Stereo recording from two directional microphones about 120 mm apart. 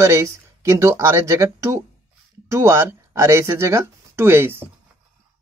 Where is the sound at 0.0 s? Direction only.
25° right (ahead or behind).